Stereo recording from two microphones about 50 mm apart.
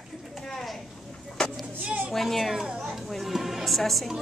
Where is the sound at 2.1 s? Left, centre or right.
Centre.